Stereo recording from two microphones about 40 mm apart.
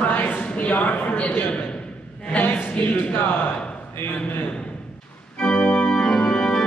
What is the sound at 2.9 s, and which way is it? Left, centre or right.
Speech, left.